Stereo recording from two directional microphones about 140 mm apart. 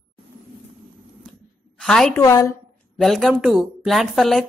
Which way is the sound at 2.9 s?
Centre (ahead or behind).